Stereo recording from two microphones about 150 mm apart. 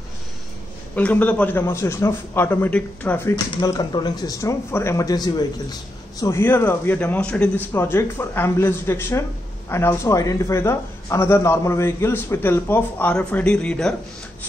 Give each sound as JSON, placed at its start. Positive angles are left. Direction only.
{"t": 0.9, "sound": "a man's voice", "side_deg": 10}
{"t": 3.6, "sound": "speech", "side_deg": 25}
{"t": 6.2, "sound": "a man's voice", "side_deg": 15}